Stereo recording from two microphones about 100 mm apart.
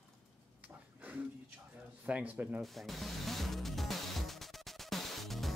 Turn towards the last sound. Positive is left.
turn(degrees=0)  # may be behind; listen again after turning